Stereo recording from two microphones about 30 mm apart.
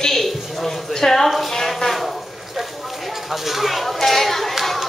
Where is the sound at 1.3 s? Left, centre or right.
Centre.